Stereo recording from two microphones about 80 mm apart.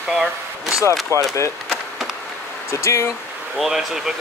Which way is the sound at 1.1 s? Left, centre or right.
Right.